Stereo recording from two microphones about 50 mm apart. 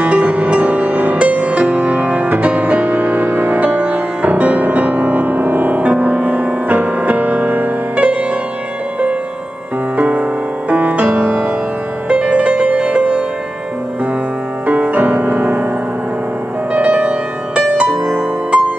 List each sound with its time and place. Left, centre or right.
0.0 s music: right
9.9 s music: right
14.7 s music: right
16.7 s music: right